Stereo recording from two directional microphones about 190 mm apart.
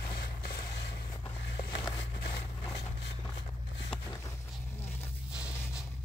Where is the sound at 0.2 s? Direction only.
50° left (ahead or behind).